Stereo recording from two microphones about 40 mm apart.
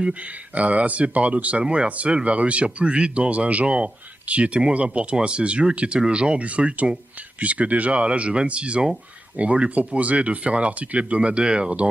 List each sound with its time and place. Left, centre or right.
0.6 s speech: right